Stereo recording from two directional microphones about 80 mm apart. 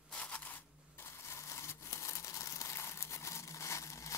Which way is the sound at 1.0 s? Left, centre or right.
Left.